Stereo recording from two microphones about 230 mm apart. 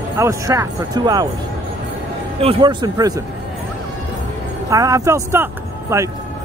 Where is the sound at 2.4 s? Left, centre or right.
Centre.